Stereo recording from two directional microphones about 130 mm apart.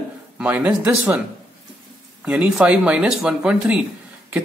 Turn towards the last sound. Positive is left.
turn(degrees=-5)  # may be behind; listen again after turning